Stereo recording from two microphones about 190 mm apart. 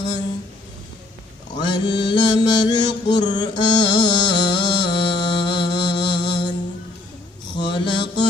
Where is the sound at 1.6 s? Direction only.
25° left (ahead or behind).